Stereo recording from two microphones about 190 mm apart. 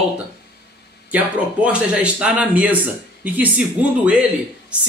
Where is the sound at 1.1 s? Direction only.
5° right (ahead or behind).